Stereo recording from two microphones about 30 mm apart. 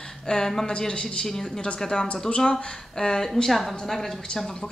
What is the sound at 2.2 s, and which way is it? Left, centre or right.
Speech, left.